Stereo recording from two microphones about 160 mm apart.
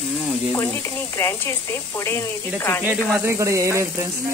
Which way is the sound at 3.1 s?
15° right (ahead or behind).